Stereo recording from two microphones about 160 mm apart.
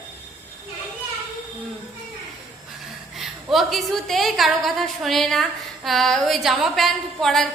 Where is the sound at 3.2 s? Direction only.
Centre (ahead or behind).